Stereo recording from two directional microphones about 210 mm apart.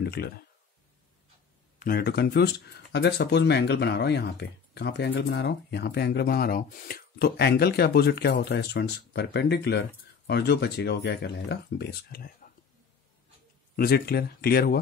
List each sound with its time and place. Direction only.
0.0 s speech: 50° left (ahead or behind)
1.8 s speech: 45° left (ahead or behind)
13.7 s speech: 50° left (ahead or behind)